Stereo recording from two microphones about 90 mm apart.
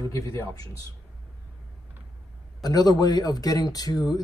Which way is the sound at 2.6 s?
45° left (ahead or behind).